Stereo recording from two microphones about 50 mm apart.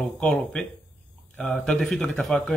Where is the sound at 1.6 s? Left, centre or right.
Centre.